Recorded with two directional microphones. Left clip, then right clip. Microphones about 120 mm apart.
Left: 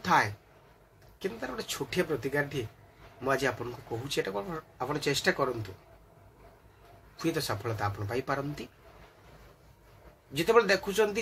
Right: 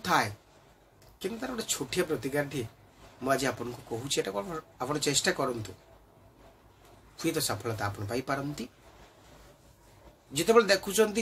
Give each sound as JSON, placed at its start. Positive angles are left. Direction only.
{"t": 0.0, "sound": "speech", "side_deg": -5}
{"t": 7.2, "sound": "speech", "side_deg": -5}
{"t": 10.3, "sound": "speech", "side_deg": -10}